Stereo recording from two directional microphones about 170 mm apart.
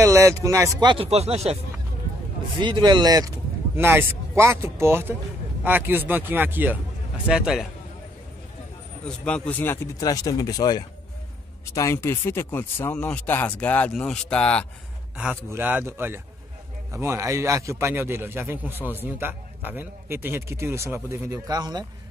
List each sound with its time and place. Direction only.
0.0 s a man's voice: 15° right (ahead or behind)
0.7 s speech: 30° right (ahead or behind)
2.6 s speech: 25° right (ahead or behind)
3.7 s a man's voice: 15° right (ahead or behind)
9.0 s speech: 5° left (ahead or behind)
15.1 s a man's voice: 10° right (ahead or behind)